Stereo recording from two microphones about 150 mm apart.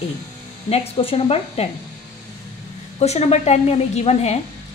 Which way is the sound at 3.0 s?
45° left (ahead or behind).